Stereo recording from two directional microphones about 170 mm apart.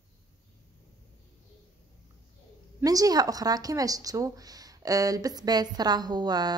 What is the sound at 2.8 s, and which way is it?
Speech, 20° right (ahead or behind).